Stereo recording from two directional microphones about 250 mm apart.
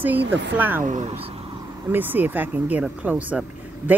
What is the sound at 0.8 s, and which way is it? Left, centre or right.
Speech, right.